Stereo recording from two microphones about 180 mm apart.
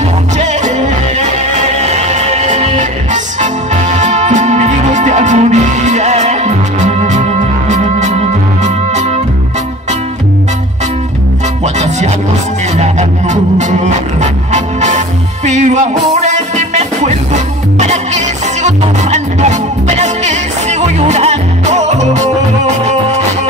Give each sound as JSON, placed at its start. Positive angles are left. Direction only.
{"t": 0.4, "sound": "music", "side_deg": -40}
{"t": 11.6, "sound": "music", "side_deg": -40}